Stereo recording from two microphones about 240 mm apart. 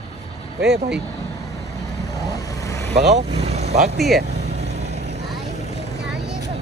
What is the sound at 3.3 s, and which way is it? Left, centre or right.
Vehicle, right.